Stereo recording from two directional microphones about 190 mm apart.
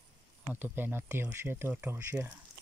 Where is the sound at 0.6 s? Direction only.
10° right (ahead or behind).